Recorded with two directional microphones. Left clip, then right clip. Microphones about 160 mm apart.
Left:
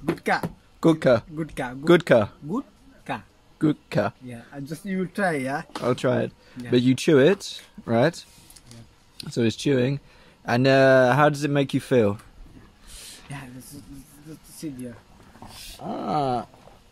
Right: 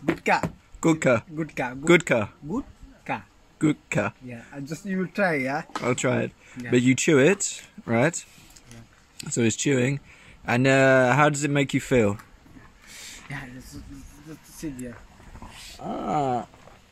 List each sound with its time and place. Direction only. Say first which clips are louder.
0.7 s speech: left 2 dB; 5° left (ahead or behind)
3.1 s speech: right 1 dB; 20° left (ahead or behind)
3.5 s speech: left 1 dB; 5° left (ahead or behind)
4.3 s speech: even; 15° left (ahead or behind)
5.8 s speech: left 2 dB; centre (ahead or behind)
9.3 s speech: left 1 dB; centre (ahead or behind)
15.8 s speech: even; 5° left (ahead or behind)